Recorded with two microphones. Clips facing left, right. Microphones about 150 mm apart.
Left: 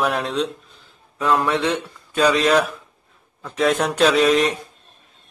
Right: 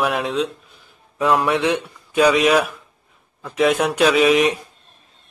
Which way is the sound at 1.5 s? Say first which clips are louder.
Right 2 dB; 10° right (ahead or behind).